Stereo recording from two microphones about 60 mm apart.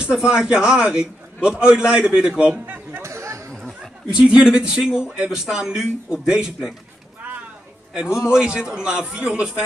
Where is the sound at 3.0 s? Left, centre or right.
Right.